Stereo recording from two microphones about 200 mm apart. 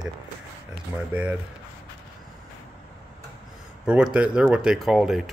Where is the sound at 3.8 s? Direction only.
5° right (ahead or behind).